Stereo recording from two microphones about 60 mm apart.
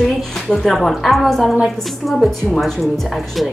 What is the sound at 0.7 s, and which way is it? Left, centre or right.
A woman's voice, centre.